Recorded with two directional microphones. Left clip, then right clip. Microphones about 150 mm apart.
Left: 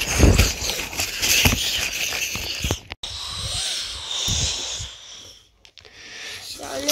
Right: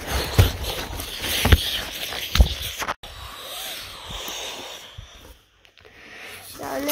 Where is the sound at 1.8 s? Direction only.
10° right (ahead or behind).